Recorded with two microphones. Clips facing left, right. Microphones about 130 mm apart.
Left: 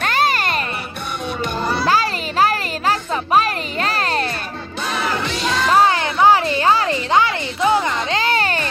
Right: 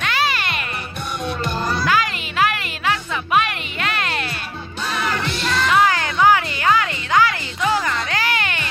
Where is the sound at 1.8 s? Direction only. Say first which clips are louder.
Left 3 dB; 35° left (ahead or behind).